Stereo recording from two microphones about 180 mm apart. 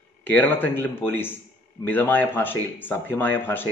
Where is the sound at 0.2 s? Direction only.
10° left (ahead or behind).